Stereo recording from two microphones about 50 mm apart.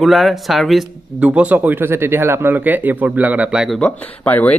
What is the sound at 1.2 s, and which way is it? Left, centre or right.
A man's voice, right.